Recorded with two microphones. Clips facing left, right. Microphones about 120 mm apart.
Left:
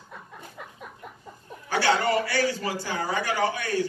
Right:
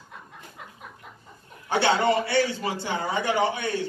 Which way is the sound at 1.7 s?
25° right (ahead or behind).